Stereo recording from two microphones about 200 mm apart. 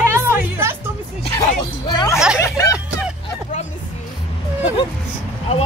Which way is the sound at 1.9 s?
20° left (ahead or behind).